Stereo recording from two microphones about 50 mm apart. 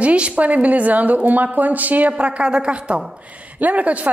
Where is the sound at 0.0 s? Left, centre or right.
Right.